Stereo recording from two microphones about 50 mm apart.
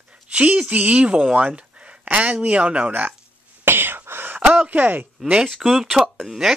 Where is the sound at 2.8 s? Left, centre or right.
Right.